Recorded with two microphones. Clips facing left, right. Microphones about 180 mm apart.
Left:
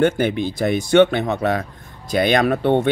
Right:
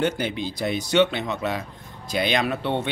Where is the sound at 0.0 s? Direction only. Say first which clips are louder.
Left 7 dB; 55° left (ahead or behind).